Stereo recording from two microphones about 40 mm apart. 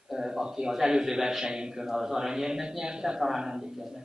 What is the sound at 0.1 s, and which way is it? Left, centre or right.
A man's voice, centre.